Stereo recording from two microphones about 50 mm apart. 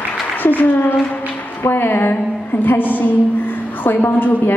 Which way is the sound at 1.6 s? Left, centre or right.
Left.